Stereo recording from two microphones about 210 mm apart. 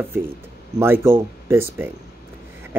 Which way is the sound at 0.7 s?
10° right (ahead or behind).